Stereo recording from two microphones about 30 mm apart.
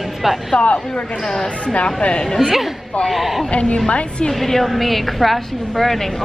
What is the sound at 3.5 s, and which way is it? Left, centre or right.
Speech, left.